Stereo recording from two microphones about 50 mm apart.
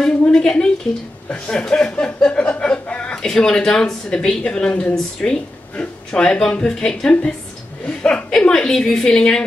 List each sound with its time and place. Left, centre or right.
0.0 s a woman's voice: centre
2.6 s chuckle: left
3.3 s a woman's voice: centre
6.4 s a woman's voice: centre